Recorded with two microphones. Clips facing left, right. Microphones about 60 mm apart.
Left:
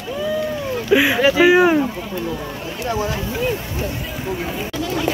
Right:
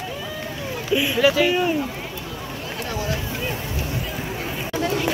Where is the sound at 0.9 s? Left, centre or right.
Left.